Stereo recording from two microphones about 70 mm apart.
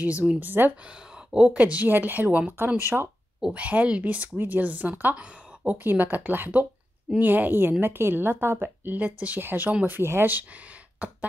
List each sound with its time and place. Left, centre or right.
0.0 s speech: centre
0.8 s speech: centre; by 3.1 s right
3.5 s speech: centre
5.9 s speech: right
8.8 s speech: right
11.0 s a sound: centre